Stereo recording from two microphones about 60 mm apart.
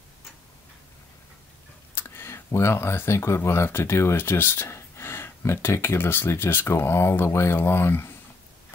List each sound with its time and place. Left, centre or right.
2.0 s speech: left